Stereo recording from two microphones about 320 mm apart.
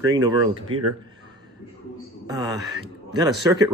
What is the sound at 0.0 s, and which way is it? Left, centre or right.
Speech, centre.